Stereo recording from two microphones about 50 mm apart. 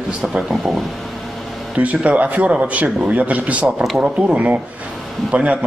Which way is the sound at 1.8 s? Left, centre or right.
Right.